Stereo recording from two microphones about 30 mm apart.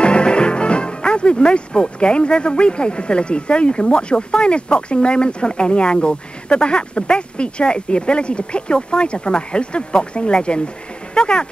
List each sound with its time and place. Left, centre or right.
0.0 s speech: left